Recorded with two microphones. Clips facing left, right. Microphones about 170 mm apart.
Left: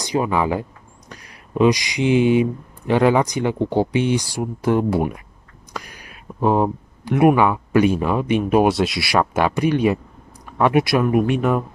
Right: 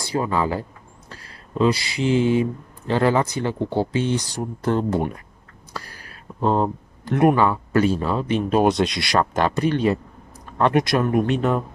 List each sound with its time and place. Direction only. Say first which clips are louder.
0.0 s speech: left 2 dB; 15° left (ahead or behind)